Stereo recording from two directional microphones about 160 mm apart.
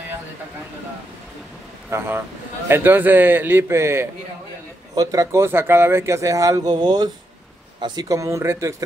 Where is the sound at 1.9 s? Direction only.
15° right (ahead or behind).